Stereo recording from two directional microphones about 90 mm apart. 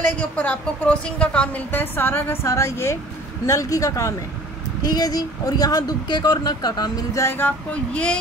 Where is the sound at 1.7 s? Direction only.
25° left (ahead or behind); by 7.0 s 50° left (ahead or behind).